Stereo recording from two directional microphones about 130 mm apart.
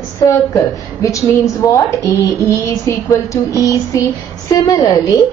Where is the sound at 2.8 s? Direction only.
25° left (ahead or behind).